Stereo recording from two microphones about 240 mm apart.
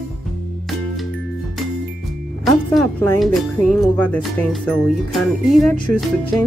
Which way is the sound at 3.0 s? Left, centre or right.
Centre.